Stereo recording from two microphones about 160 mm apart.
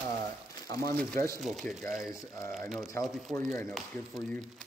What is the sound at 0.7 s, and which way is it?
Speech, 20° left (ahead or behind).